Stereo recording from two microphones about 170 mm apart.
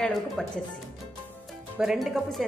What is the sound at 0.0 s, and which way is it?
Speech, centre (ahead or behind).